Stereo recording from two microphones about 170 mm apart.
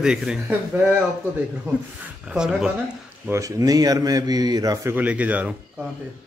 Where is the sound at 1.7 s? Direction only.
15° right (ahead or behind).